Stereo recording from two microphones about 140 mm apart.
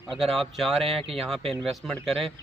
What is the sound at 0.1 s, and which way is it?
Speech, centre (ahead or behind).